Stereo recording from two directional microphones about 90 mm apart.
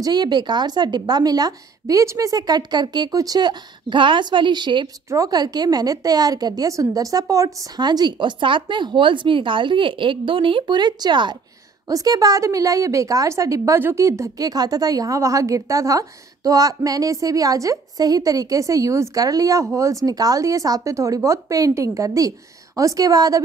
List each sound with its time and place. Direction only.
0.0 s a woman's voice: 50° right (ahead or behind)
5.1 s a woman's voice: 45° right (ahead or behind)
11.9 s a woman's voice: 45° right (ahead or behind)